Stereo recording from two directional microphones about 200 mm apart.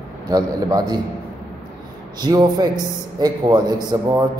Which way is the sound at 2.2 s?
20° right (ahead or behind).